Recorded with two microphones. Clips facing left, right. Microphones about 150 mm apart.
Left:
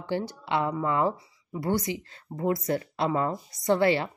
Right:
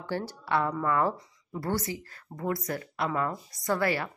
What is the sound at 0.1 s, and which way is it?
A woman's voice, 15° left (ahead or behind).